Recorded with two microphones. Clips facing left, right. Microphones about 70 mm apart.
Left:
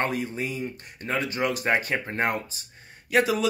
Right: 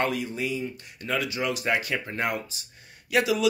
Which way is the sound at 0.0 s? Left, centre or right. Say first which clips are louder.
Even; left.